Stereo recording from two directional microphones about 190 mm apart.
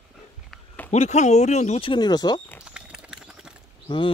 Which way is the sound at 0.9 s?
35° left (ahead or behind).